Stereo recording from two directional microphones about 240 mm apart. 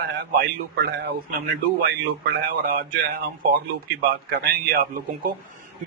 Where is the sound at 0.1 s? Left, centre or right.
Right.